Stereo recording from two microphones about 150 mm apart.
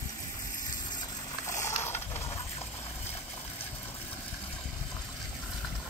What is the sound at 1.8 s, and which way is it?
Mechanisms, 15° left (ahead or behind).